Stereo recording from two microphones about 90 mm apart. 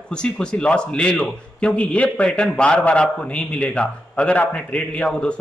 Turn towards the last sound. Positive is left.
turn(degrees=10)  # may be behind; listen again after turning